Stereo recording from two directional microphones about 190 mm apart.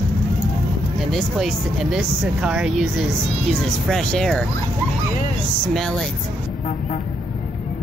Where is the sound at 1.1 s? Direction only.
Centre (ahead or behind).